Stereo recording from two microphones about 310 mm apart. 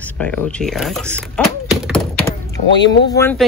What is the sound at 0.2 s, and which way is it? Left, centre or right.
Speech, centre.